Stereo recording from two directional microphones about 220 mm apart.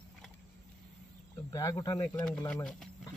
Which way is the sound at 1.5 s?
15° left (ahead or behind).